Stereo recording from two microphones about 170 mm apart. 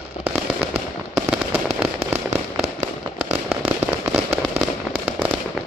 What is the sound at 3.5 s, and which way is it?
Fireworks, 10° right (ahead or behind).